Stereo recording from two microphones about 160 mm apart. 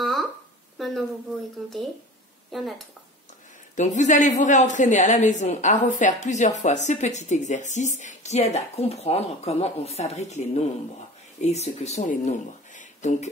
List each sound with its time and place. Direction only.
0.0 s a sound: centre (ahead or behind)
2.5 s speech: centre (ahead or behind)
3.7 s speech: 50° left (ahead or behind)